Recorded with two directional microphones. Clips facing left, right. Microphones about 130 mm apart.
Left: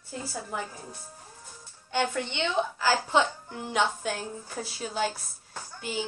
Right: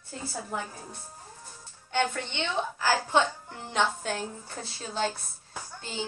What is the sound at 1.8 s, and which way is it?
A woman's voice, 15° left (ahead or behind).